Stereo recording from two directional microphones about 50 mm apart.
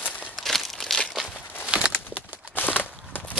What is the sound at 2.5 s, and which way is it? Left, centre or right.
Walk, left.